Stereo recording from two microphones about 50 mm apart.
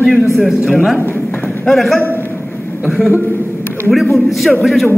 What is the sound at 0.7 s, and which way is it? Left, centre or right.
A man's voice, centre.